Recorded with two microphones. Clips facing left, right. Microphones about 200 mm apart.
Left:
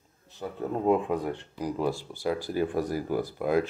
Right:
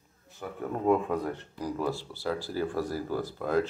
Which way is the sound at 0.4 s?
20° left (ahead or behind).